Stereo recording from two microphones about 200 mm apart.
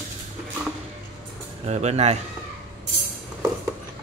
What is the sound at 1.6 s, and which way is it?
Speech, 35° right (ahead or behind).